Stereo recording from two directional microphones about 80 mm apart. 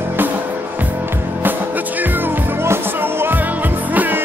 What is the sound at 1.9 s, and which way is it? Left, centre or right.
Music, right.